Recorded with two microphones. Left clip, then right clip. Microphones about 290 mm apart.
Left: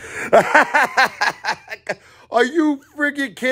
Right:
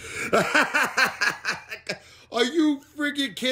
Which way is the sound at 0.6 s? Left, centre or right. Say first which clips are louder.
Left 7 dB; centre.